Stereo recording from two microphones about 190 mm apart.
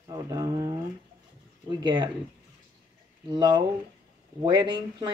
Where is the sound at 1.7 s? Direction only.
25° right (ahead or behind).